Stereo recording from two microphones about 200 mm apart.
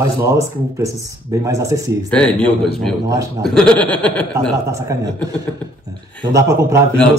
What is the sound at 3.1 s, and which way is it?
Speech, 20° right (ahead or behind).